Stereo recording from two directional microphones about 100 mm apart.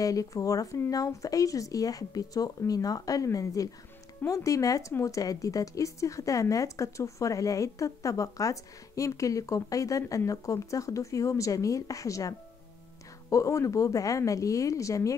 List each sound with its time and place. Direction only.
0.0 s speech: 35° left (ahead or behind)